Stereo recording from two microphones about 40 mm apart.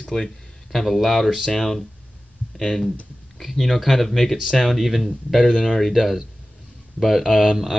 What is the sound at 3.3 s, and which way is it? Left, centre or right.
Speech, centre.